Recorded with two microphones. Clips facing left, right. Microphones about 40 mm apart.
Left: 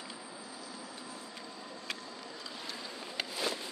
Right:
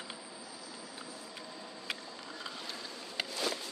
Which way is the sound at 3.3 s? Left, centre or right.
Centre.